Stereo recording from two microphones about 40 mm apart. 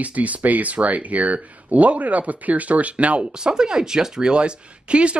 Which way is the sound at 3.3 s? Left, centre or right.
Centre.